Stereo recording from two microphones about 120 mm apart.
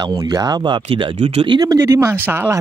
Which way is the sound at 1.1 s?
70° right (ahead or behind).